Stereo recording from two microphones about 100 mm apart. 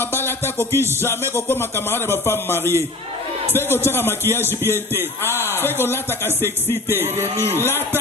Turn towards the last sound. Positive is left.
turn(degrees=25)  # may be behind; listen again after turning